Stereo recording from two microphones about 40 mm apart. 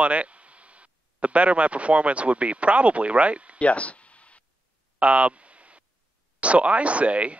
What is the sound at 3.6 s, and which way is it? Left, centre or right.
Speech, left.